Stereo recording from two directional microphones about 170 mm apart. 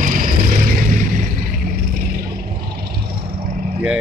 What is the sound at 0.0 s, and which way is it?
Vehicle, 55° right (ahead or behind).